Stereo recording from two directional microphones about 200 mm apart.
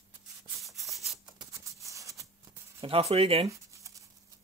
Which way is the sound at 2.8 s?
30° right (ahead or behind).